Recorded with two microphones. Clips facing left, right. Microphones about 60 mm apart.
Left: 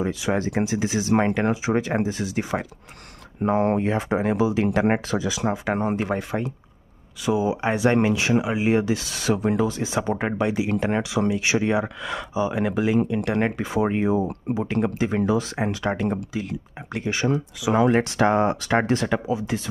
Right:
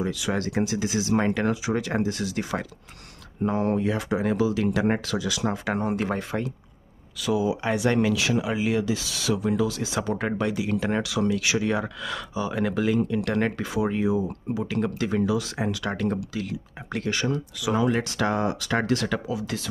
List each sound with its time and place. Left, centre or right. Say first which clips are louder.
0.0 s speech: left 3 dB; left
3.4 s speech: left 3 dB; left
5.4 s speech: left 2 dB; centre
7.2 s speech: left 2 dB; left
8.7 s speech: left 3 dB; left
13.7 s speech: left 3 dB; left
15.9 s speech: left 2 dB; centre
17.7 s speech: left 5 dB; left